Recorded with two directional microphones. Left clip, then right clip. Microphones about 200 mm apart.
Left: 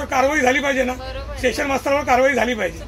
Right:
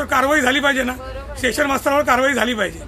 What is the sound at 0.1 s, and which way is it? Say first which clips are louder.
A man's voice: even; 25° right (ahead or behind).